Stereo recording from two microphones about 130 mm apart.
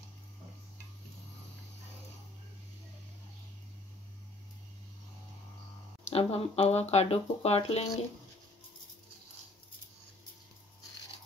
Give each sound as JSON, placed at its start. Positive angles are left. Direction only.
{"t": 6.0, "sound": "speech", "side_deg": 50}